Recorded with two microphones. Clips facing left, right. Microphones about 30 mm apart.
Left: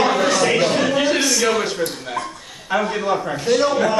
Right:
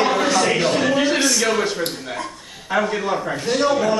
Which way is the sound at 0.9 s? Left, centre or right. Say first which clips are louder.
Even; centre.